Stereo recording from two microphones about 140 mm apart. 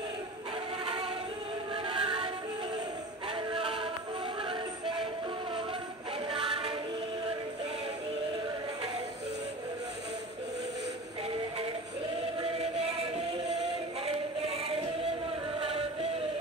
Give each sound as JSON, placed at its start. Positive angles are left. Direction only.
{"t": 1.9, "sound": "music", "side_deg": -35}
{"t": 3.5, "sound": "music", "side_deg": -40}
{"t": 6.3, "sound": "music", "side_deg": -40}
{"t": 14.0, "sound": "music", "side_deg": -40}